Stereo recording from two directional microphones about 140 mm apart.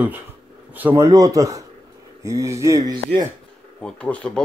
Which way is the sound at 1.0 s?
25° right (ahead or behind).